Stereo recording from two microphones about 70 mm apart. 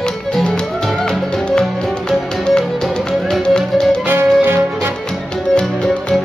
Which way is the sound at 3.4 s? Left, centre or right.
Centre.